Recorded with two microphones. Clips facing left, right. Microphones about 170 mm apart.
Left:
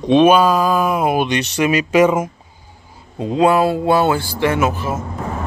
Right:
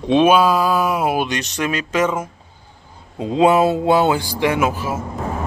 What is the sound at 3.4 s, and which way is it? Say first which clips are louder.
Speech: even; 20° right (ahead or behind).